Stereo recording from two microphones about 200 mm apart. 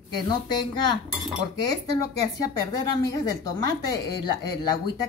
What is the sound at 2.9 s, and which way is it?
A woman's voice, 20° left (ahead or behind).